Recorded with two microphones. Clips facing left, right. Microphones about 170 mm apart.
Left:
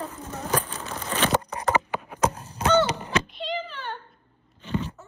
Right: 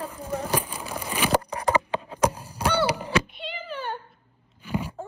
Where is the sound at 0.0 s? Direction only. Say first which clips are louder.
Right 3 dB; 10° right (ahead or behind).